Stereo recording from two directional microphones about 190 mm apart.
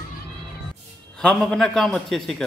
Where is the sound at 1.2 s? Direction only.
5° left (ahead or behind).